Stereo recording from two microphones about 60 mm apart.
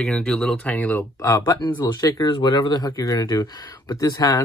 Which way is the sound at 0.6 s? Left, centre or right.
Left.